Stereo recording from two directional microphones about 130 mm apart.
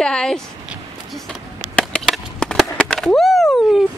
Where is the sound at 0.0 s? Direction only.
5° left (ahead or behind).